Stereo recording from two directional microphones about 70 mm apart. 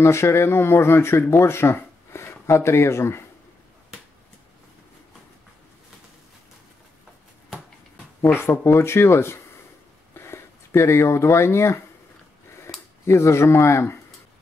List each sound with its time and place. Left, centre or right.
0.0 s speech: left
8.2 s speech: left